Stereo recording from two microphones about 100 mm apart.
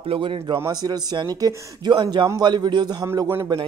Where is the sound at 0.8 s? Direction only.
45° right (ahead or behind).